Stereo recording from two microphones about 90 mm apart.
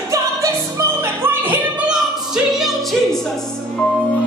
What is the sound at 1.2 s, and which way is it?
Music, 20° right (ahead or behind).